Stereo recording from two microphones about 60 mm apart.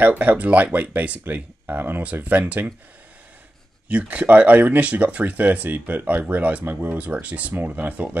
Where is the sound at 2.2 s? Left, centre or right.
Right.